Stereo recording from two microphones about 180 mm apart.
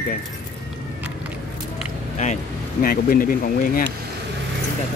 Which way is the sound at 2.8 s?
55° left (ahead or behind).